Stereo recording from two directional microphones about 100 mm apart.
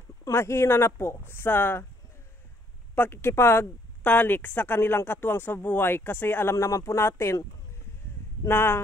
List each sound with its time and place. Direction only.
0.2 s a woman's voice: 25° left (ahead or behind)
3.0 s a woman's voice: 25° left (ahead or behind)
8.5 s a woman's voice: 25° left (ahead or behind)